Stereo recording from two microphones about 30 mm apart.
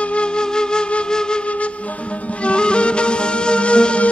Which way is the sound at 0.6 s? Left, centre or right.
Left.